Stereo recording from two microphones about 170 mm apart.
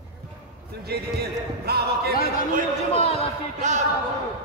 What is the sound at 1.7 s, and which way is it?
Singing, 70° right (ahead or behind).